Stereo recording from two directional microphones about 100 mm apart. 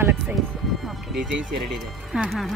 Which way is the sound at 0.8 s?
5° right (ahead or behind).